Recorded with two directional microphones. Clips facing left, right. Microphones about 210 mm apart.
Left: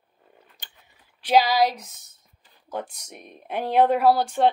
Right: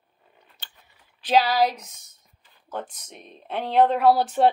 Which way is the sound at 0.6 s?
15° left (ahead or behind).